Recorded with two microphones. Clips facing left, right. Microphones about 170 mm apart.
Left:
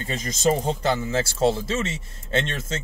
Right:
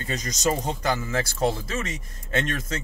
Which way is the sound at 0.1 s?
25° left (ahead or behind).